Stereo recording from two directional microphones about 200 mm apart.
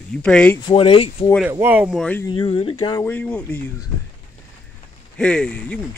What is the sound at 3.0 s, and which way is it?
Speech, 5° left (ahead or behind).